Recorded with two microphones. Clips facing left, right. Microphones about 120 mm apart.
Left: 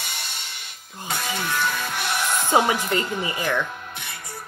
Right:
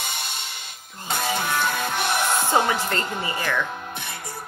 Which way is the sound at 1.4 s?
20° right (ahead or behind).